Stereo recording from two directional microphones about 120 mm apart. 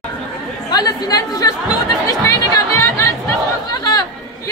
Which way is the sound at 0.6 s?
35° left (ahead or behind).